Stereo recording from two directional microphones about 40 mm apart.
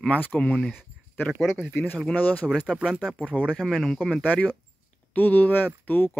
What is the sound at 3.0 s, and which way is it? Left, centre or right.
Speech, right.